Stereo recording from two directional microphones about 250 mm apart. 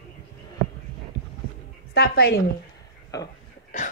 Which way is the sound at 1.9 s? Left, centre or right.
Left.